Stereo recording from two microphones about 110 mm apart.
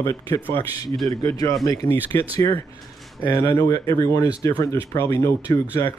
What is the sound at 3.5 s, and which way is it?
Speech, 30° left (ahead or behind).